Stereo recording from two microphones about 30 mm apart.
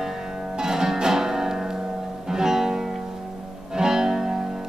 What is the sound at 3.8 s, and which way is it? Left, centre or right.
Music, right.